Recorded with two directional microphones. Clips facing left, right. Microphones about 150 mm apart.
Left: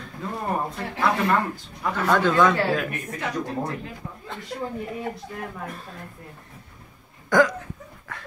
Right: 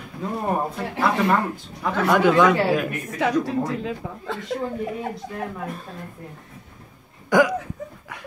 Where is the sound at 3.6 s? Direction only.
90° right.